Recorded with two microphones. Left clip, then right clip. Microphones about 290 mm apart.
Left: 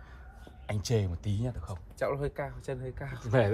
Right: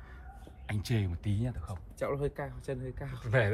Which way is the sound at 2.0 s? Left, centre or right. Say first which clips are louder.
Left 2 dB; left.